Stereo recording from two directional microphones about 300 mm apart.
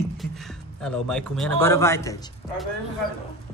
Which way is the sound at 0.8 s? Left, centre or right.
Centre.